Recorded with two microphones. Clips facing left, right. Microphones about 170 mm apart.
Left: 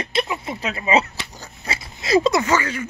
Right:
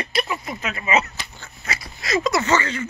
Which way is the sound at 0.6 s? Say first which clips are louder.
Left 3 dB; 30° left (ahead or behind).